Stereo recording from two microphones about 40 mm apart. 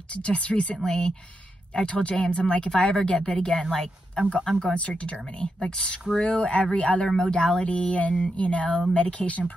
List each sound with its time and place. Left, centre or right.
0.1 s speech: left
0.8 s speech: centre
1.7 s speech: left
3.7 s speech: centre
4.7 s speech: left